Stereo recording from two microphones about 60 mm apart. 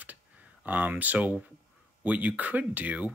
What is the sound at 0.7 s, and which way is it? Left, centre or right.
Speech, right.